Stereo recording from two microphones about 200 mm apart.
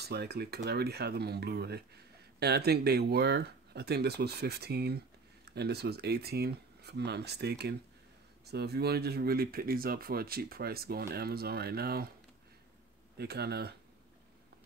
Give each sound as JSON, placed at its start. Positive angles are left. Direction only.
{"t": 0.0, "sound": "speech", "side_deg": -55}
{"t": 13.2, "sound": "speech", "side_deg": -55}